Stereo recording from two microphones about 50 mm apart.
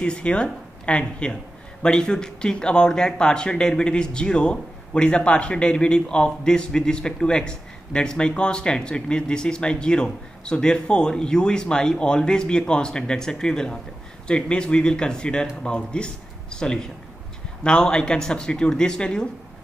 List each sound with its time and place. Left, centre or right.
0.0 s a man's voice: left